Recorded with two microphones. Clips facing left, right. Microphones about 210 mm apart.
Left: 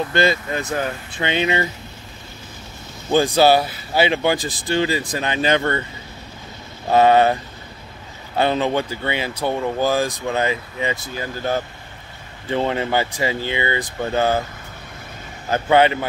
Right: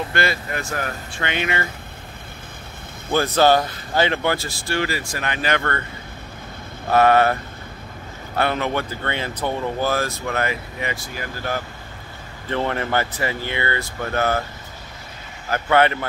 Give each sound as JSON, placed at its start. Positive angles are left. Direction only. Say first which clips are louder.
{"t": 0.1, "sound": "speech", "louder": "left 4 dB", "side_deg": 20}
{"t": 3.1, "sound": "speech", "louder": "left 2 dB", "side_deg": 15}
{"t": 6.9, "sound": "speech", "louder": "left 2 dB", "side_deg": 20}
{"t": 8.4, "sound": "speech", "louder": "left 3 dB", "side_deg": 20}
{"t": 15.5, "sound": "speech", "louder": "left 2 dB", "side_deg": 20}